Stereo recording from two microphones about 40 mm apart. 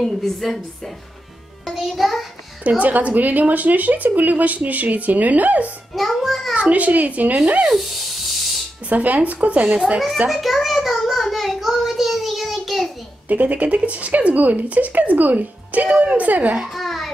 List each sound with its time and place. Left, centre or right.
0.0 s a child's voice: centre
1.7 s a child's voice: centre
2.8 s a woman's voice: right
6.2 s a child's voice: centre
6.5 s speech: right
7.7 s music: centre
8.8 s speech: right
10.3 s a child's voice: centre
11.1 s child singing: centre
13.3 s speech: right
16.6 s a sound: centre